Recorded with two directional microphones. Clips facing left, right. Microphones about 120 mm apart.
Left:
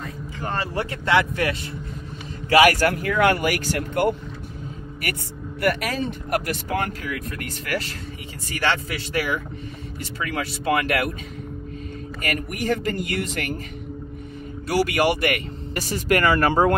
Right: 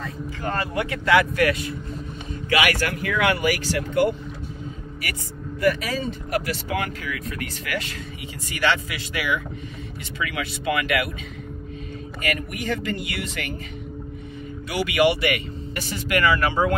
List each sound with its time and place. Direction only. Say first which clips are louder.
0.4 s speech: even; 30° left (ahead or behind)
2.5 s speech: left 6 dB; 40° left (ahead or behind)
5.6 s speech: right 1 dB; 65° left (ahead or behind); by 7.2 s 45° left (ahead or behind)
9.1 s speech: left 1 dB; 40° left (ahead or behind)
12.4 s speech: left 3 dB; 40° left (ahead or behind)
14.7 s speech: even; 40° left (ahead or behind)